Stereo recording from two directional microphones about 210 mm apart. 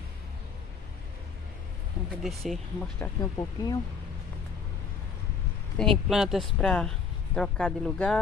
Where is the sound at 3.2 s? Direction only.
20° left (ahead or behind).